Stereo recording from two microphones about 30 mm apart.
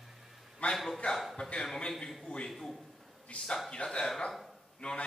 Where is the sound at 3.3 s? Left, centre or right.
Left.